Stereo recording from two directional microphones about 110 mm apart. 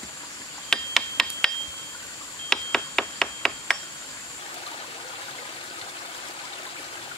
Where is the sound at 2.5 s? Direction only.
5° left (ahead or behind).